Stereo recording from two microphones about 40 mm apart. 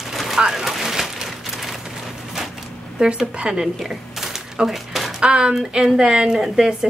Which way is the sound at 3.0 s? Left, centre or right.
Right.